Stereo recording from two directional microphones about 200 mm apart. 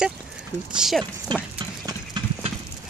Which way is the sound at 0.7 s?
Centre (ahead or behind).